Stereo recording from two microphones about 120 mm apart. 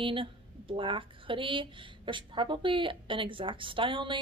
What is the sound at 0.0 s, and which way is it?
A woman's voice, 45° right (ahead or behind).